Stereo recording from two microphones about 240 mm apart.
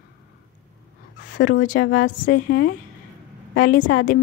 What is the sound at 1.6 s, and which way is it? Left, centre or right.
A woman's voice, left.